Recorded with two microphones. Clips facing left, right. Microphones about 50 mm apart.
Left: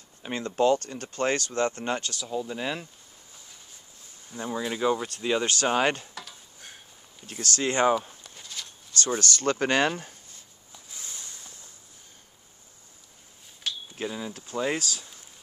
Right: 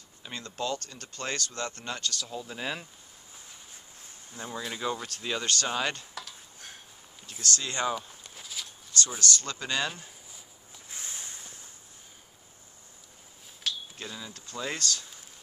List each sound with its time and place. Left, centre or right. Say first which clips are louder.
0.2 s speech: left 10 dB; left
2.1 s speech: left 6 dB; centre
4.4 s speech: left 7 dB; centre
5.4 s speech: left 5 dB; left
6.1 s a sound: even; centre
7.2 s speech: left 5 dB; centre
7.5 s speech: left 8 dB; left
8.1 s a sound: even; centre
9.2 s speech: left 6 dB; left
11.1 s a sound: even; centre
13.9 s speech: left 8 dB; centre